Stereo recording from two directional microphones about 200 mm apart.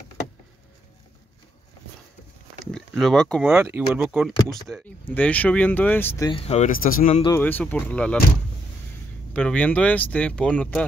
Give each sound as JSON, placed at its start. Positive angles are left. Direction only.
{"t": 3.0, "sound": "speech", "side_deg": 0}
{"t": 3.4, "sound": "speech", "side_deg": -10}
{"t": 6.3, "sound": "speech", "side_deg": 30}
{"t": 7.3, "sound": "speech", "side_deg": 10}
{"t": 9.3, "sound": "speech", "side_deg": 5}